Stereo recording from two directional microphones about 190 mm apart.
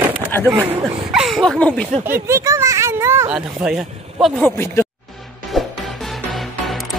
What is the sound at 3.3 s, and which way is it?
Speech, centre (ahead or behind).